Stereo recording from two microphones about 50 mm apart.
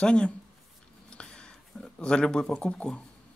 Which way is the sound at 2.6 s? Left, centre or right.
Left.